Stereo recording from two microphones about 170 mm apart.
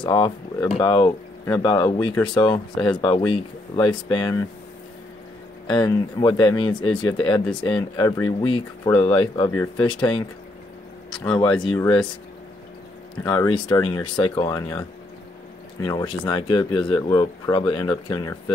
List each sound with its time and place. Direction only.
0.0 s speech: 25° left (ahead or behind)
5.7 s speech: 25° left (ahead or behind)
11.1 s speech: 5° left (ahead or behind)
13.2 s speech: 25° left (ahead or behind)